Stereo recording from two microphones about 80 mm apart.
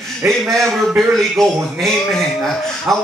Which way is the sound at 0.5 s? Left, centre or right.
Centre.